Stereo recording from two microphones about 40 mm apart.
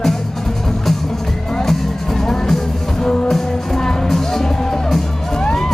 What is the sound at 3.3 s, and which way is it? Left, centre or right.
Music, centre.